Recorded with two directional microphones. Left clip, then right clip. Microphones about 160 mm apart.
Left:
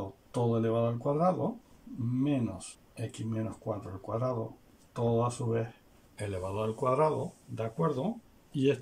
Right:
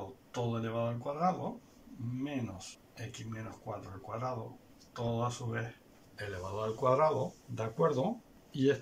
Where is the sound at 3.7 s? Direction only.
25° left (ahead or behind).